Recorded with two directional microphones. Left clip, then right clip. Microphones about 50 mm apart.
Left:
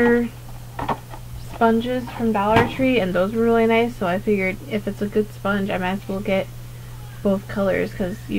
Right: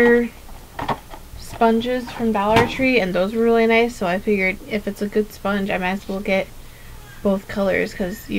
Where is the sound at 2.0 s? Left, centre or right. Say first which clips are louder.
Right 1 dB; centre.